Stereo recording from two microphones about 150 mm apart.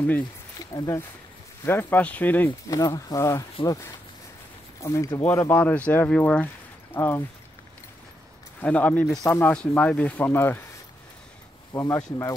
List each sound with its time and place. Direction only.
0.6 s speech: 25° left (ahead or behind)
2.7 s speech: 25° left (ahead or behind)
8.5 s speech: 10° left (ahead or behind)
11.7 s speech: 20° left (ahead or behind)